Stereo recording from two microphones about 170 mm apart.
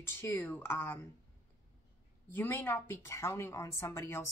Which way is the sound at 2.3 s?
15° left (ahead or behind).